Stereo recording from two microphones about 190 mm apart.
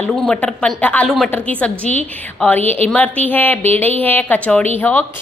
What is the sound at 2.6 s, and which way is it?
Speech, 35° right (ahead or behind).